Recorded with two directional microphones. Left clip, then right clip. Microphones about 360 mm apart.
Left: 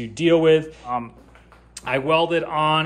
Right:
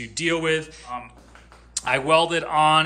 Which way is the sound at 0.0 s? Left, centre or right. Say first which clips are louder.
Left 7 dB; centre.